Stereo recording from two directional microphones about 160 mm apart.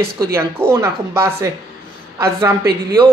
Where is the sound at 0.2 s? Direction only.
15° right (ahead or behind).